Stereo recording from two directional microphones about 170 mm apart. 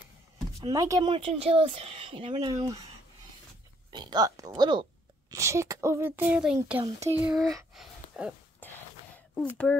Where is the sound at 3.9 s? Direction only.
25° right (ahead or behind); by 7.5 s 5° right (ahead or behind).